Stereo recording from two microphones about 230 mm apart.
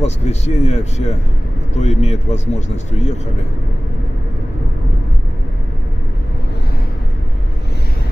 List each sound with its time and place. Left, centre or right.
0.0 s a man's voice: left